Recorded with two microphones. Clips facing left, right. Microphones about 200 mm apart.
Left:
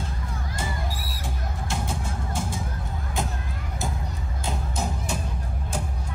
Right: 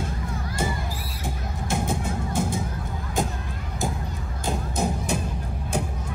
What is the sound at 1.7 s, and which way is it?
Music, 55° right (ahead or behind).